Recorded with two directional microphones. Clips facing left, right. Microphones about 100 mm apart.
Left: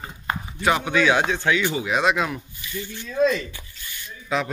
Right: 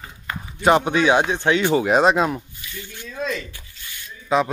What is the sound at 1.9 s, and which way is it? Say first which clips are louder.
Speech: right 4 dB; 35° right (ahead or behind).